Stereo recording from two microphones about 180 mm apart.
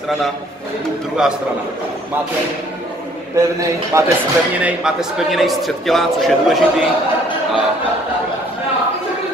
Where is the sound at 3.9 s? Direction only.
15° right (ahead or behind).